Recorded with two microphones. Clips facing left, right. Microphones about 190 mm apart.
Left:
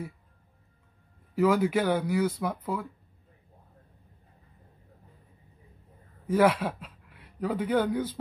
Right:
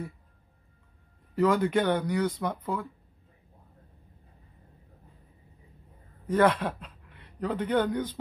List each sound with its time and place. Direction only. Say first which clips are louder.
1.3 s speech: even; 5° left (ahead or behind)
6.2 s a man's voice: even; 10° left (ahead or behind)